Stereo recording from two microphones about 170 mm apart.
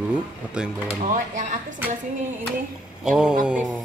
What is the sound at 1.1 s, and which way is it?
Speech, 50° right (ahead or behind).